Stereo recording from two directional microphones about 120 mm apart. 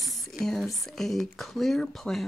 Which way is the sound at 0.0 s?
Centre (ahead or behind).